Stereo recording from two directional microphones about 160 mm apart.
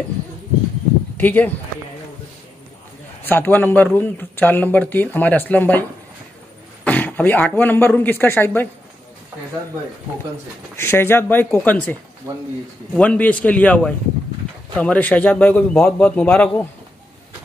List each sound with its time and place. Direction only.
1.1 s speech: 10° left (ahead or behind)
3.3 s speech: 10° left (ahead or behind)
10.8 s speech: 15° left (ahead or behind)
12.3 s speech: 20° right (ahead or behind)
12.9 s speech: 5° left (ahead or behind)